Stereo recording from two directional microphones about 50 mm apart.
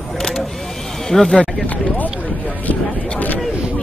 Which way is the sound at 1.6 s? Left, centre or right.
Left.